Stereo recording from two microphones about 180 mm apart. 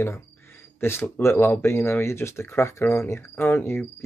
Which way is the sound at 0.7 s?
15° left (ahead or behind).